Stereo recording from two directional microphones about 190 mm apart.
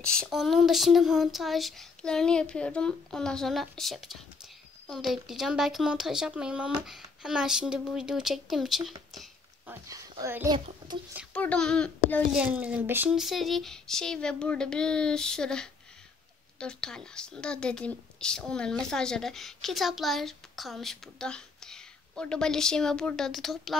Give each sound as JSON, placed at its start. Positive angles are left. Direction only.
{"t": 0.0, "sound": "a woman's voice", "side_deg": 5}
{"t": 9.7, "sound": "speech", "side_deg": -15}
{"t": 11.3, "sound": "a woman's voice", "side_deg": 5}
{"t": 12.4, "sound": "a woman's voice", "side_deg": -5}